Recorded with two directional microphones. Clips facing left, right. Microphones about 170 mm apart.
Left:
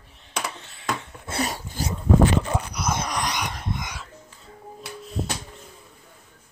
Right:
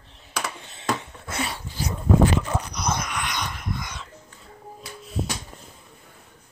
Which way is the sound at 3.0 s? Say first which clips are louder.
Left 3 dB; 35° left (ahead or behind).